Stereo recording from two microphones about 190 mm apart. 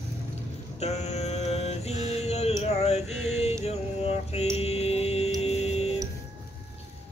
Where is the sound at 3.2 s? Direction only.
35° left (ahead or behind).